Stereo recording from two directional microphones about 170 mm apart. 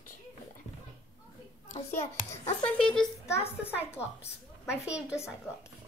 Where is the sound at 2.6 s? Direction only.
5° left (ahead or behind).